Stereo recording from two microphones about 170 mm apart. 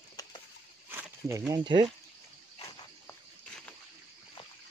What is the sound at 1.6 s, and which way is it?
Speech, 25° right (ahead or behind).